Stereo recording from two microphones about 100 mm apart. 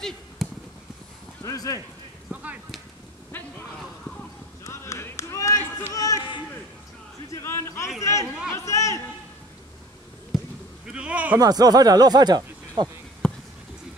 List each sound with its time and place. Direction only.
0.4 s a sound: centre (ahead or behind)
1.4 s speech: 35° left (ahead or behind)
3.3 s speech: 20° left (ahead or behind)
4.6 s run: 30° left (ahead or behind)
5.9 s speech: 35° left (ahead or behind)
7.3 s a man's voice: 25° left (ahead or behind)
10.9 s speech: 10° right (ahead or behind)
11.3 s speech: 40° right (ahead or behind)
13.2 s a sound: 10° left (ahead or behind)